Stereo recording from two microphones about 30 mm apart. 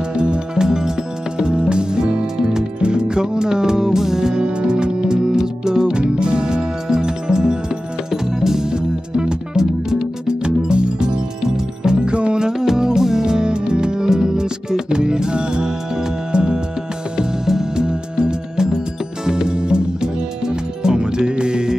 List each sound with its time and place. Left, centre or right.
0.1 s music: right
0.6 s music: centre
1.4 s music: right; by 8.6 s centre
8.6 s music: right
10.2 s music: right
12.4 s music: centre
17.5 s music: centre
17.8 s music: right